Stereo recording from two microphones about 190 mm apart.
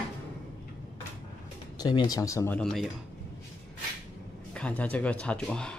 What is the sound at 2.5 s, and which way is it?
Speech, 5° left (ahead or behind).